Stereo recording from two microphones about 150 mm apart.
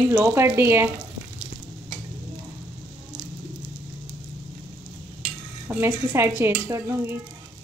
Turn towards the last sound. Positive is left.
turn(degrees=-15)  # may be behind; listen again after turning